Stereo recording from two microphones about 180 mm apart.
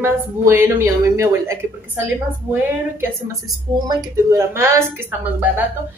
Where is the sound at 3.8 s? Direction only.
20° right (ahead or behind).